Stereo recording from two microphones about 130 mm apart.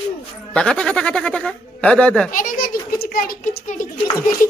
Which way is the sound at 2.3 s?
90° left.